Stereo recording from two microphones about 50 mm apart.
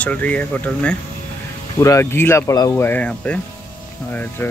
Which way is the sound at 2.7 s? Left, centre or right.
Left.